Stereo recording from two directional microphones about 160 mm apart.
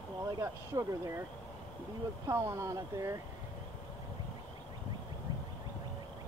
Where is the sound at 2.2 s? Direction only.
20° right (ahead or behind).